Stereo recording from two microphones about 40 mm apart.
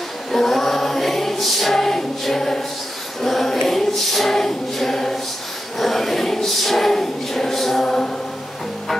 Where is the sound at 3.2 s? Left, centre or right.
Centre.